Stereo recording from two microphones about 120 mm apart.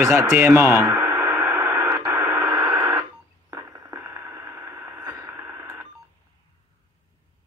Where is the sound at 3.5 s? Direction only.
30° right (ahead or behind).